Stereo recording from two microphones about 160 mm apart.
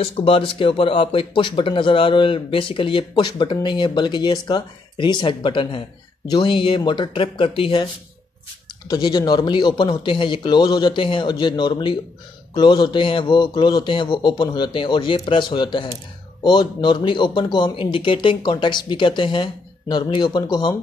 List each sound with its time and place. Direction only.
0.0 s speech: 35° left (ahead or behind)
8.9 s speech: 25° left (ahead or behind)